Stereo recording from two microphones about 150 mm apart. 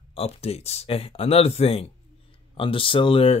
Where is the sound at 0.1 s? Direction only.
40° left (ahead or behind).